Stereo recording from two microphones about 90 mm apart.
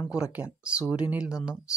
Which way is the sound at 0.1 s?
15° right (ahead or behind).